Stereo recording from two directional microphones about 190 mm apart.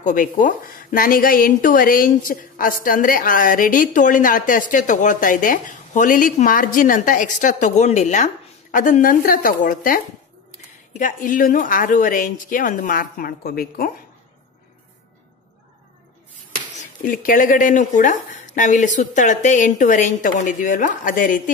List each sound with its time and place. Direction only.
0.0 s speech: 45° left (ahead or behind)
17.0 s speech: 45° left (ahead or behind)